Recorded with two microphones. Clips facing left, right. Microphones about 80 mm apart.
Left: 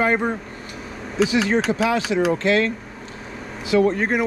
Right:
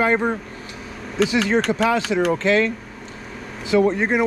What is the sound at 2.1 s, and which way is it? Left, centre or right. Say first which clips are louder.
Speech: even; right.